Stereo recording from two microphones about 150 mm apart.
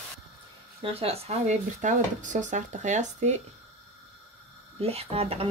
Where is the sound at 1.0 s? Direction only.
45° right (ahead or behind).